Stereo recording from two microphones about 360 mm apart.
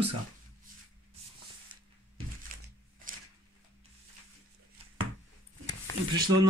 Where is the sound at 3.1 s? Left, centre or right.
Right.